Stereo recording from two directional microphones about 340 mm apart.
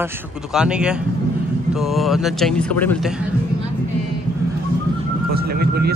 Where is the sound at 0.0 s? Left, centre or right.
Centre.